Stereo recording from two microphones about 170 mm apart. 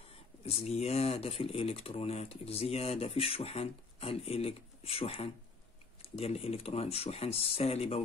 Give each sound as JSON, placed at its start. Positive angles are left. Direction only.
{"t": 0.4, "sound": "speech", "side_deg": 35}